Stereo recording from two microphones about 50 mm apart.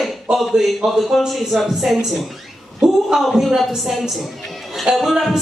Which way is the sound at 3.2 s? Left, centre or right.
Centre.